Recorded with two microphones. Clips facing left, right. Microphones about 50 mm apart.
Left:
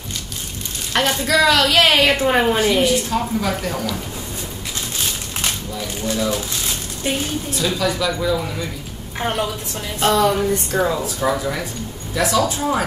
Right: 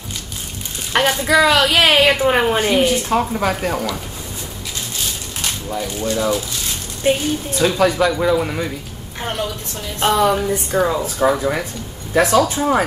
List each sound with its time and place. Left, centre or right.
0.9 s a woman's voice: centre
2.6 s speech: right
5.7 s speech: right
7.0 s speech: right
7.5 s speech: right
9.2 s a woman's voice: centre
9.9 s a woman's voice: centre
11.1 s speech: right
12.1 s speech: right